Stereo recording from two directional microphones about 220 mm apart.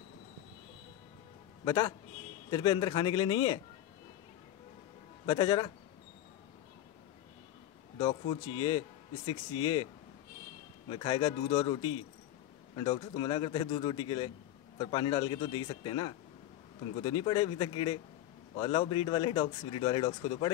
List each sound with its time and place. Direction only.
1.6 s a man's voice: 15° left (ahead or behind)
5.2 s speech: 20° left (ahead or behind)
8.3 s speech: 20° left (ahead or behind)
10.9 s speech: 20° left (ahead or behind)